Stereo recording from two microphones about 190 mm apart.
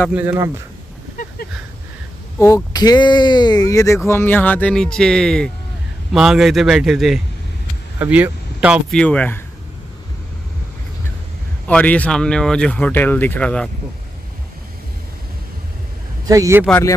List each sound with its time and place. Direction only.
0.1 s a man's voice: 10° right (ahead or behind)
2.3 s a man's voice: 20° left (ahead or behind); by 9.0 s 5° right (ahead or behind)
9.0 s speech: 5° left (ahead or behind)
11.6 s speech: 5° left (ahead or behind)
16.3 s a man's voice: 15° right (ahead or behind)